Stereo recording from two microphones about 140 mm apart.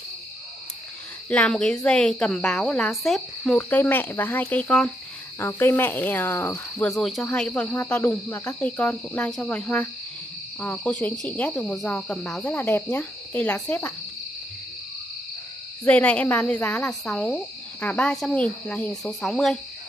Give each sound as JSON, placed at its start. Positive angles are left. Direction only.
{"t": 1.3, "sound": "speech", "side_deg": 5}
{"t": 3.5, "sound": "speech", "side_deg": 15}
{"t": 6.9, "sound": "speech", "side_deg": 0}
{"t": 15.8, "sound": "speech", "side_deg": 10}